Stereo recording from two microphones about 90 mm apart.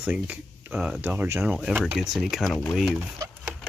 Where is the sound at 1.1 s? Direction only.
25° right (ahead or behind).